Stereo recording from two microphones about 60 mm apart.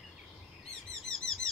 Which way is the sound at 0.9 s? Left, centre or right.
Centre.